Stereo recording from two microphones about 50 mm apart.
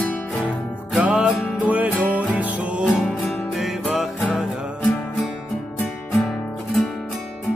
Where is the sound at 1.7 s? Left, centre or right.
Right.